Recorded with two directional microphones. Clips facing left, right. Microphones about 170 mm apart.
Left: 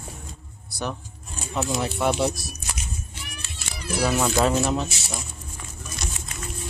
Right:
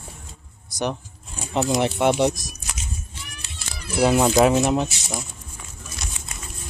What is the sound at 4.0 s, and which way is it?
Speech, 25° right (ahead or behind).